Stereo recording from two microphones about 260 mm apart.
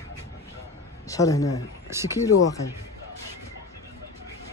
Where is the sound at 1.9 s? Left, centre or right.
Centre.